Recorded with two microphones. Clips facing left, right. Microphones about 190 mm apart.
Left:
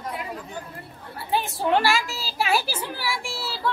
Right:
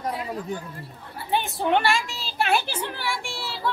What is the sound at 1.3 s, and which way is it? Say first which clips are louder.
A woman's voice: even; centre (ahead or behind).